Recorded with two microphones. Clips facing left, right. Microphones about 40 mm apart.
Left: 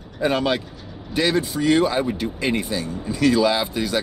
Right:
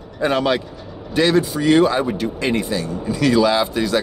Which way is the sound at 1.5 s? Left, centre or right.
Right.